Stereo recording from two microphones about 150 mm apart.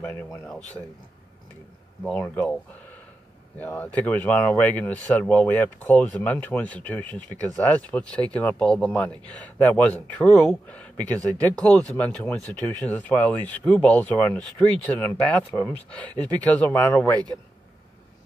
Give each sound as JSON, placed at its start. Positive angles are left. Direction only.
{"t": 0.0, "sound": "speech", "side_deg": 10}
{"t": 2.0, "sound": "speech", "side_deg": 10}